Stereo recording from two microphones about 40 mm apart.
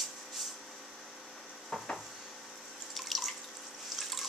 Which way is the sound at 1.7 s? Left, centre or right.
Centre.